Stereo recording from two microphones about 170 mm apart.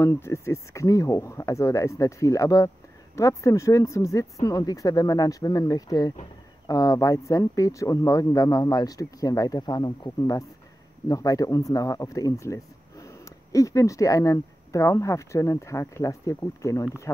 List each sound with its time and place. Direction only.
0.0 s speech: 15° left (ahead or behind)